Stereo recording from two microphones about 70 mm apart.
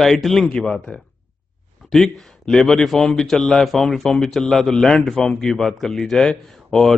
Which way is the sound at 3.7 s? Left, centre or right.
Centre.